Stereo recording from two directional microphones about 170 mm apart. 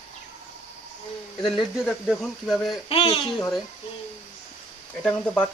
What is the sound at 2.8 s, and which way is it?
Speech, 30° left (ahead or behind).